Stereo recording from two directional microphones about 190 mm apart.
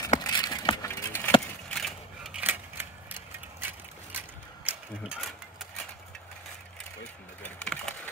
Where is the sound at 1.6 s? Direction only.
Centre (ahead or behind).